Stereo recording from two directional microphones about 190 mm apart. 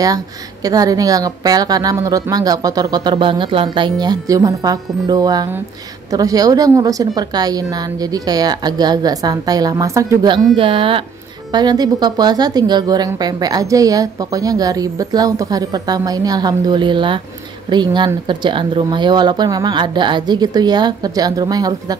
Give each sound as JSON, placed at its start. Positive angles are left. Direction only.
{"t": 0.7, "sound": "a woman's voice", "side_deg": -20}